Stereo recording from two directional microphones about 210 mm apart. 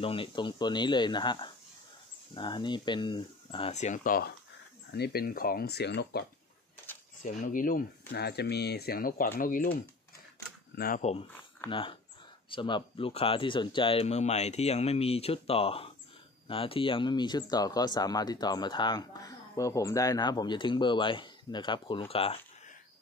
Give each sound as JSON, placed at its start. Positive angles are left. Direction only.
{"t": 0.0, "sound": "speech", "side_deg": 25}
{"t": 7.2, "sound": "speech", "side_deg": 35}
{"t": 8.1, "sound": "speech", "side_deg": 50}
{"t": 10.8, "sound": "speech", "side_deg": 40}